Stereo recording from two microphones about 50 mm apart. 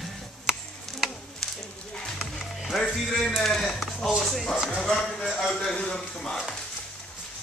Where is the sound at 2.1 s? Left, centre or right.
Centre.